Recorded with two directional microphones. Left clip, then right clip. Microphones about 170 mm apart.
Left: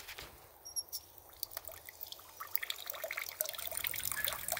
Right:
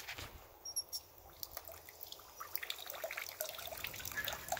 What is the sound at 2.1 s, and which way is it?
Water, 65° left (ahead or behind).